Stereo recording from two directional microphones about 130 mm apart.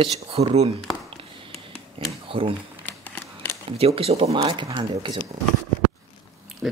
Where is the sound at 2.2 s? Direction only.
45° right (ahead or behind).